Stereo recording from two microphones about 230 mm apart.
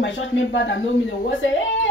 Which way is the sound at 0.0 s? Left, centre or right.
Left.